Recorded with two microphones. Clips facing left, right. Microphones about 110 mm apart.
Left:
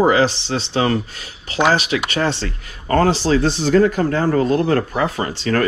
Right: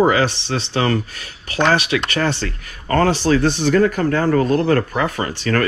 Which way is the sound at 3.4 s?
60° right (ahead or behind).